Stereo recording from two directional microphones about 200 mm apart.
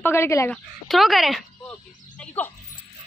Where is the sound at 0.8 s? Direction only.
Centre (ahead or behind).